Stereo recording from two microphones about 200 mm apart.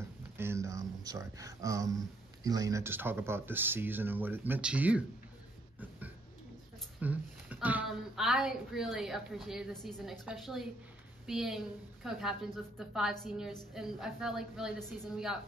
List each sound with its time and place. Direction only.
0.4 s speech: 15° right (ahead or behind)
5.8 s a sound: 10° right (ahead or behind)
7.0 s a woman's voice: 10° right (ahead or behind)